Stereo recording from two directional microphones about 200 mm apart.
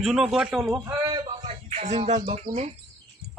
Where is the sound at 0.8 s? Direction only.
15° right (ahead or behind).